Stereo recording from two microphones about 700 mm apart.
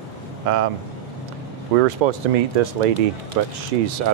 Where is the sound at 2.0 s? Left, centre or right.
Right.